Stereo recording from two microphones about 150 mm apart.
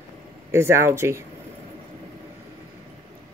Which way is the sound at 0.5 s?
15° right (ahead or behind).